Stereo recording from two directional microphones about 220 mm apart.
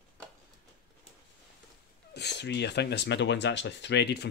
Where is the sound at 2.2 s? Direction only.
50° left (ahead or behind).